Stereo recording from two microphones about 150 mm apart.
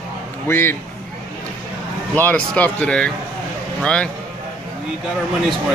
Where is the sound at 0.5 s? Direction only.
15° left (ahead or behind).